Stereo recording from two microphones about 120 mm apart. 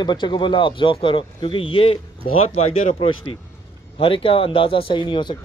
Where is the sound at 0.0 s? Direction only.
40° left (ahead or behind).